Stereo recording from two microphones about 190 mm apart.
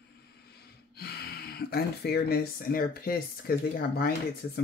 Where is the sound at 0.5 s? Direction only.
55° left (ahead or behind).